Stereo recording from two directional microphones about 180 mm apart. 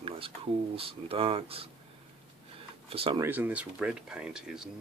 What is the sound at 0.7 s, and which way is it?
Speech, 30° right (ahead or behind).